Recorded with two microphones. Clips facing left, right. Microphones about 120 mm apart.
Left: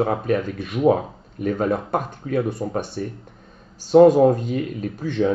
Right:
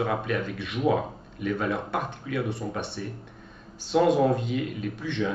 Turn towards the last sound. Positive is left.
turn(degrees=40)  # may be behind; listen again after turning